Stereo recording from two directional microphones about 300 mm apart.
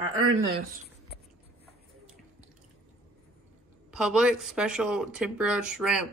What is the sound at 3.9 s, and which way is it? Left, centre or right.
Speech, centre.